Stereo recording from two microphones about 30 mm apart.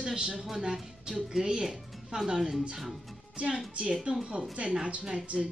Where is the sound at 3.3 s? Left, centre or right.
Right.